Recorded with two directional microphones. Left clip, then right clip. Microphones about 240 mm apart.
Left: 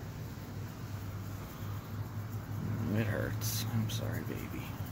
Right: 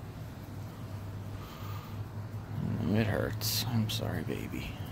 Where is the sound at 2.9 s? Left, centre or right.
Right.